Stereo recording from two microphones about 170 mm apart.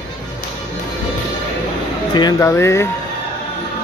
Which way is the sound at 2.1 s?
20° left (ahead or behind).